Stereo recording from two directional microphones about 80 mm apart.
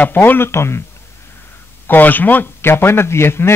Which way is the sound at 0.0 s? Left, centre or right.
Left.